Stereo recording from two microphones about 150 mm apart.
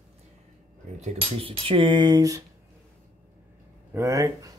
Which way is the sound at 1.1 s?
40° right (ahead or behind).